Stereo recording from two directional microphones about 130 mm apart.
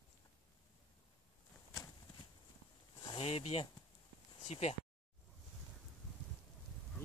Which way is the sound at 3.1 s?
50° left (ahead or behind).